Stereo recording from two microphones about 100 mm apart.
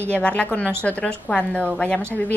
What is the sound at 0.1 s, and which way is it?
A woman's voice, 10° left (ahead or behind).